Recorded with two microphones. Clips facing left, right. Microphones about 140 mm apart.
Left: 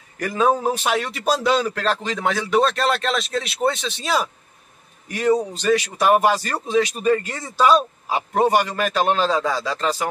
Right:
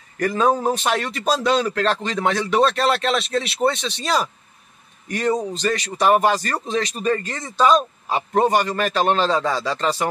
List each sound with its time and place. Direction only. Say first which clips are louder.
0.2 s speech: right 1 dB; 5° left (ahead or behind)